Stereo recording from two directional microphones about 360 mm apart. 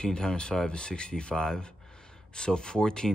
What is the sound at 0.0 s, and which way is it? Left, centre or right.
Speech, centre.